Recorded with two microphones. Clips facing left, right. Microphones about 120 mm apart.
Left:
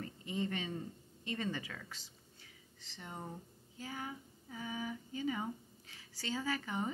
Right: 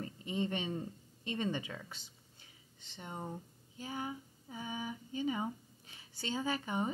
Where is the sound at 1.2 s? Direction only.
20° right (ahead or behind).